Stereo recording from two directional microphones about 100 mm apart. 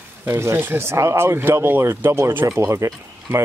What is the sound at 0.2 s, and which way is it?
Speech, 25° right (ahead or behind).